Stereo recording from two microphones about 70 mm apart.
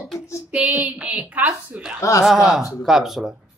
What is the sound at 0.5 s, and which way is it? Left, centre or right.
A woman's voice, right.